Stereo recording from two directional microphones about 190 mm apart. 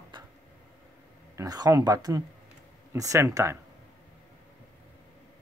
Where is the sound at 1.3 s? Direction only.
20° right (ahead or behind).